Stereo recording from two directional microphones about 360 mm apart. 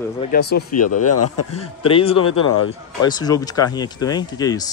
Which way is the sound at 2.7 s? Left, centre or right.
Centre.